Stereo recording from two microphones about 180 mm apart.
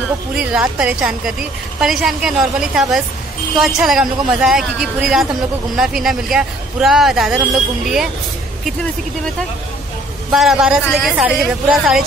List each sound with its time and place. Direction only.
0.3 s a woman's voice: 5° right (ahead or behind)
10.3 s a woman's voice: 5° right (ahead or behind)